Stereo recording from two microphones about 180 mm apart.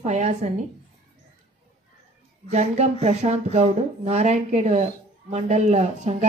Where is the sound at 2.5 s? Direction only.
40° right (ahead or behind).